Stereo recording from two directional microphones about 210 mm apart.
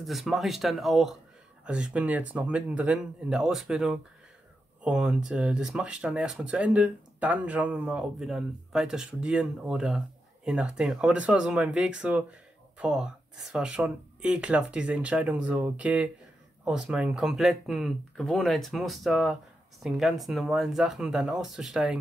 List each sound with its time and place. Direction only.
0.0 s speech: centre (ahead or behind)